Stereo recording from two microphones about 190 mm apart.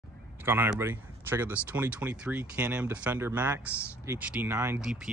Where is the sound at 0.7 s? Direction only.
10° right (ahead or behind).